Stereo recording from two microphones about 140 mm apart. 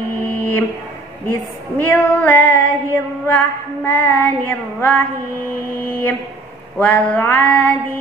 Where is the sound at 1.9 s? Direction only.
10° left (ahead or behind).